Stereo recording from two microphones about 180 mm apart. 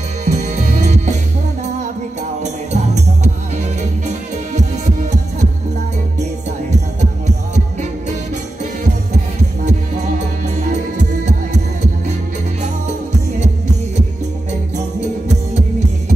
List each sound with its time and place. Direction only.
0.2 s music: 40° right (ahead or behind)
2.4 s music: 40° right (ahead or behind)
4.1 s music: 40° right (ahead or behind)
9.7 s music: 40° right (ahead or behind)